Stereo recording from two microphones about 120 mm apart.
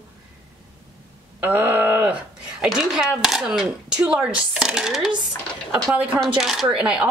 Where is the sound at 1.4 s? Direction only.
15° right (ahead or behind).